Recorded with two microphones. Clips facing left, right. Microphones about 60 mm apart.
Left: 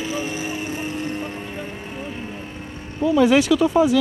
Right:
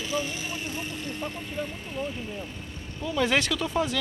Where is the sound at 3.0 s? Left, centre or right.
Centre.